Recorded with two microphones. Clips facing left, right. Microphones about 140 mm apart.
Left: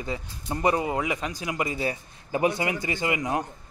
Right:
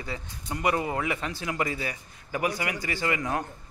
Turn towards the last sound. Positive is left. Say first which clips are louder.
# left 2 dB
turn(degrees=20)  # may be behind; listen again after turning